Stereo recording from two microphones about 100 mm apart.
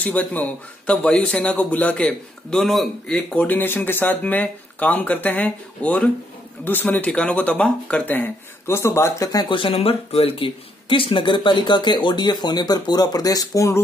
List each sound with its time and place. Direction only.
0.0 s a man's voice: 15° left (ahead or behind)
3.5 s a man's voice: 20° left (ahead or behind)
9.5 s speech: 60° left (ahead or behind); by 13.8 s 30° left (ahead or behind)